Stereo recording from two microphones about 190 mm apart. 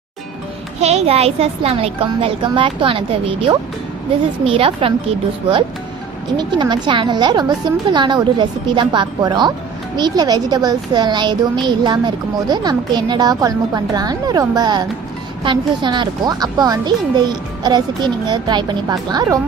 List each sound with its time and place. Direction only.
0.7 s a child's voice: 35° right (ahead or behind)
6.3 s speech: 25° right (ahead or behind)